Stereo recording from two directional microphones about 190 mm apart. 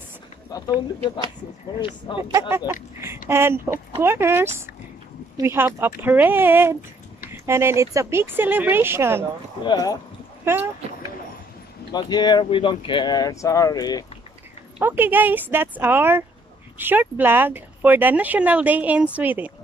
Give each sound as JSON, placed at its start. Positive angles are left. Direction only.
{"t": 2.1, "sound": "speech", "side_deg": 25}
{"t": 2.5, "sound": "speech", "side_deg": -10}
{"t": 9.7, "sound": "speech", "side_deg": 20}
{"t": 10.4, "sound": "speech", "side_deg": -10}
{"t": 11.9, "sound": "speech", "side_deg": 20}
{"t": 14.8, "sound": "speech", "side_deg": -10}